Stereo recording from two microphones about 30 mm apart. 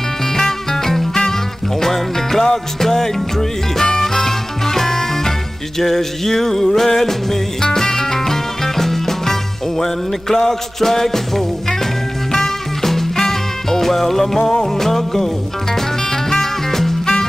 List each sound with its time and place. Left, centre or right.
0.4 s music: centre
17.0 s music: left